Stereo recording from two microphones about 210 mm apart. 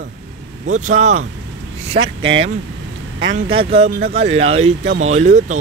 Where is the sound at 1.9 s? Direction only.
50° right (ahead or behind).